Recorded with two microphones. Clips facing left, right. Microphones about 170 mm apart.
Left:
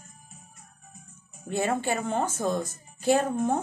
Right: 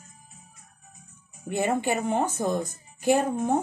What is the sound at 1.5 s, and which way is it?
A woman's voice, 15° right (ahead or behind).